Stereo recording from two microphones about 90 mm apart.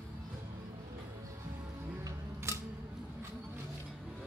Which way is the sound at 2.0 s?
30° right (ahead or behind).